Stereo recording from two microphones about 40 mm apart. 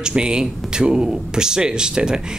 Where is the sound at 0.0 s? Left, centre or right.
Right.